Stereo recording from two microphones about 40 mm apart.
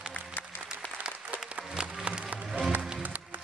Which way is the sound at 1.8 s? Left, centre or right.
Right.